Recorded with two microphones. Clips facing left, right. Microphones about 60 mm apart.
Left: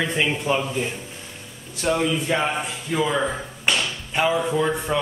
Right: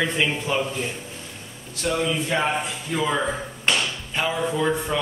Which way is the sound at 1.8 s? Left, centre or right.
Centre.